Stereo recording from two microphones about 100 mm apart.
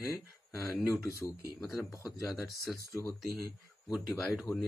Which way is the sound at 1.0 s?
30° left (ahead or behind).